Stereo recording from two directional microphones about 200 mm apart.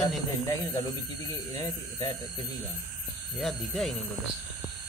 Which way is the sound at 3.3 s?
Centre (ahead or behind).